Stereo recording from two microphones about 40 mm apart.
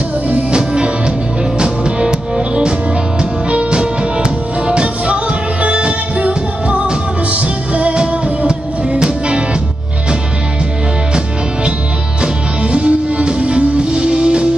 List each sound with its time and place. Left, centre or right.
0.3 s music: right
1.6 s music: centre
8.0 s music: right
12.2 s music: right